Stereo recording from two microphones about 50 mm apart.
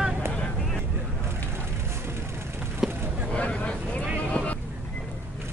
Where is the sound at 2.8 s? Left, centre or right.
Centre.